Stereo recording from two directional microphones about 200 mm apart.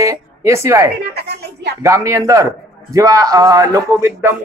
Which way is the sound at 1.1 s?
55° right (ahead or behind).